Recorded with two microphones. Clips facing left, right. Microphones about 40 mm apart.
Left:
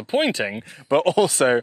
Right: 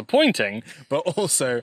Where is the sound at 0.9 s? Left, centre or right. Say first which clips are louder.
Left 6 dB; centre.